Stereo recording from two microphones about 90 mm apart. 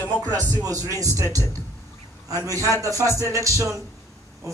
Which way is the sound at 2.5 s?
35° right (ahead or behind).